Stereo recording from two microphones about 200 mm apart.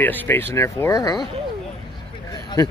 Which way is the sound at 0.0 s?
10° left (ahead or behind).